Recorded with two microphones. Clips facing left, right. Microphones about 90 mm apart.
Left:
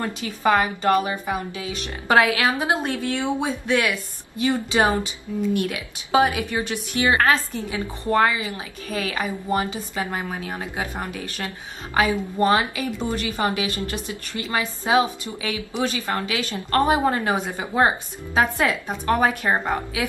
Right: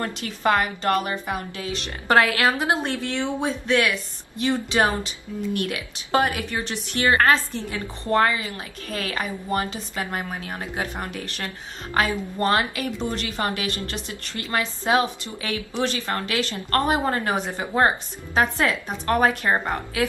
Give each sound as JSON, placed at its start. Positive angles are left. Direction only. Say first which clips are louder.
{"t": 0.0, "sound": "a woman's voice", "louder": "left 1 dB", "side_deg": 15}